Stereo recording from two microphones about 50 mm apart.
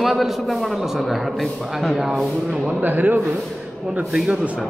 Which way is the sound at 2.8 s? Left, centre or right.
Right.